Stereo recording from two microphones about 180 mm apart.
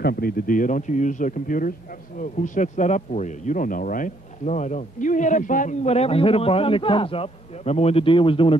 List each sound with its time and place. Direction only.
0.0 s speech: 55° left (ahead or behind); by 8.5 s 30° left (ahead or behind)